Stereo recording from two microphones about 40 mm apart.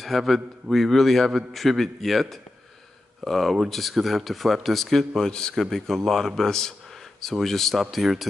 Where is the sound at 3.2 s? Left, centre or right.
Centre.